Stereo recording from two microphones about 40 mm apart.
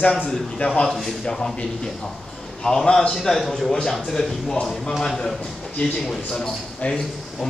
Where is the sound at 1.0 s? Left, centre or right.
Centre.